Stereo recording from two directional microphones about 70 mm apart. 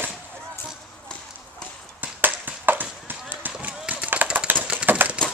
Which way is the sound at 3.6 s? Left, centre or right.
Right.